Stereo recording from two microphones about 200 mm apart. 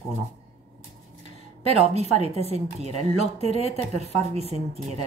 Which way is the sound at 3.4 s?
30° left (ahead or behind).